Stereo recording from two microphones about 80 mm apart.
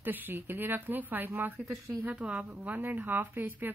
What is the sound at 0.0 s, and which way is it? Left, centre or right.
Speech, right.